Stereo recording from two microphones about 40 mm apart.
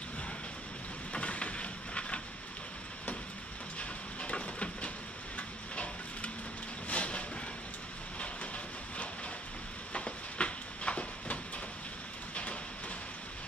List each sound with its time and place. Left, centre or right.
1.1 s train: left
4.2 s a sound: left
6.9 s vehicle: left
9.9 s train: left